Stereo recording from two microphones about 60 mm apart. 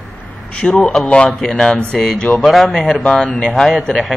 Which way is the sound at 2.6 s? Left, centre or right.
Centre.